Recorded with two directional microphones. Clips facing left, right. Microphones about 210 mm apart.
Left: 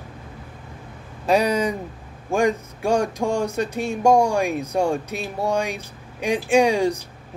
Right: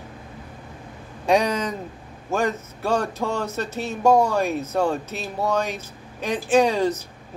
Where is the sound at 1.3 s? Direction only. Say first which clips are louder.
Left 1 dB; 10° left (ahead or behind).